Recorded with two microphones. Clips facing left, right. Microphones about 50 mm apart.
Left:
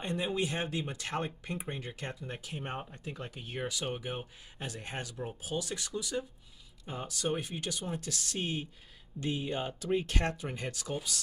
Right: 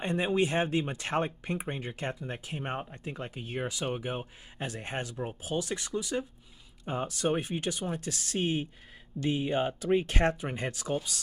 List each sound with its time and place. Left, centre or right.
0.0 s speech: right